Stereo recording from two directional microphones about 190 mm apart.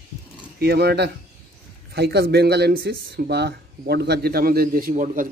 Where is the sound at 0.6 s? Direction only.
60° right (ahead or behind).